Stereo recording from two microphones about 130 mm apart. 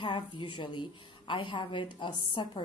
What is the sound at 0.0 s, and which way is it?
A woman's voice, 40° left (ahead or behind).